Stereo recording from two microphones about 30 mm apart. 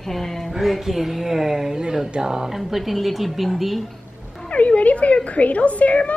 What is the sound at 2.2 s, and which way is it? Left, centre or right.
Speech, right.